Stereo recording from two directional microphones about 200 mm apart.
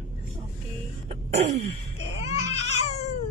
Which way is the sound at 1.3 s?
30° right (ahead or behind).